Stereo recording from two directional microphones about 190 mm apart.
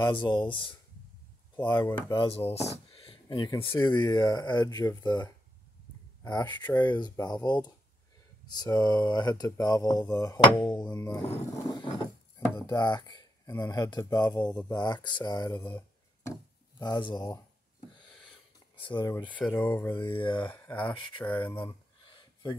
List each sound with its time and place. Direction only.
0.0 s speech: 25° left (ahead or behind)
6.4 s speech: 10° left (ahead or behind)
7.0 s speech: 20° left (ahead or behind)
11.5 s a sound: 20° left (ahead or behind)
12.5 s speech: 25° left (ahead or behind)
14.4 s speech: 5° left (ahead or behind)
14.7 s speech: 20° left (ahead or behind)
18.8 s speech: 25° left (ahead or behind)
19.2 s speech: 10° left (ahead or behind)
19.9 s speech: 25° left (ahead or behind)
20.4 s speech: 10° left (ahead or behind)